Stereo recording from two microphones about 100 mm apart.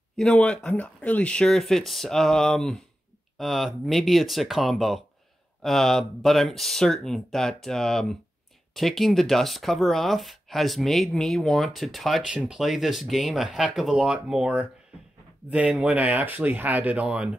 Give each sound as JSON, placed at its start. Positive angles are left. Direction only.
{"t": 0.2, "sound": "speech", "side_deg": 10}